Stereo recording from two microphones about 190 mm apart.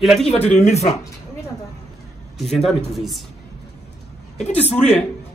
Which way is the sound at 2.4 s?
Centre (ahead or behind).